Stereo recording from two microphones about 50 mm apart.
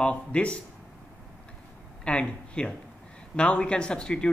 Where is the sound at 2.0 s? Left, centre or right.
Left.